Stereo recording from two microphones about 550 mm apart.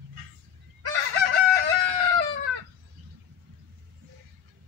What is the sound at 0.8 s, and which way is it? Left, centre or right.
Chicken, right.